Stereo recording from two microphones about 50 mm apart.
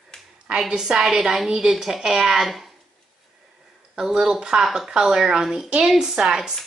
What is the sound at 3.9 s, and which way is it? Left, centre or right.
Speech, centre.